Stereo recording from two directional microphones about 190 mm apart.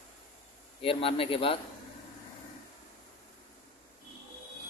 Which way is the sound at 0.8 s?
30° left (ahead or behind).